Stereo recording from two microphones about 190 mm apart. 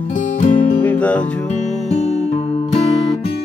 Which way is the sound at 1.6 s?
Centre (ahead or behind).